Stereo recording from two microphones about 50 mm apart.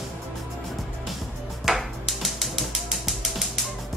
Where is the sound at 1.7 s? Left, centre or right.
Centre.